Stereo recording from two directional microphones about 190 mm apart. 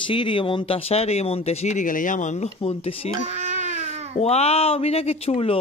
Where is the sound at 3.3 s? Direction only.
40° right (ahead or behind).